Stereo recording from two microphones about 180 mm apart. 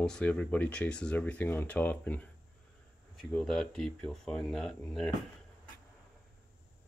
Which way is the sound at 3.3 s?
Centre (ahead or behind).